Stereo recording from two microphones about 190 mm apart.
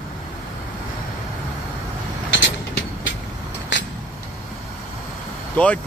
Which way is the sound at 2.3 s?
75° left (ahead or behind).